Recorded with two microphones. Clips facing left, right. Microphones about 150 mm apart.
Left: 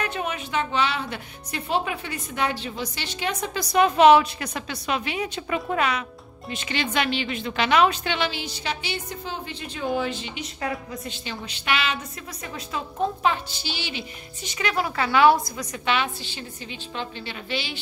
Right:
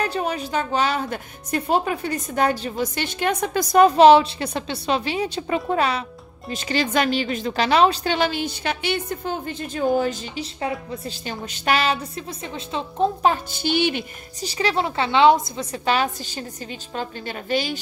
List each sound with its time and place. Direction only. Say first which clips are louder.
0.0 s a woman's voice: right 5 dB; 35° right (ahead or behind)
11.2 s a woman's voice: right 5 dB; 45° right (ahead or behind)
13.2 s a woman's voice: right 4 dB; 45° right (ahead or behind)
14.4 s a woman's voice: right 4 dB; 35° right (ahead or behind)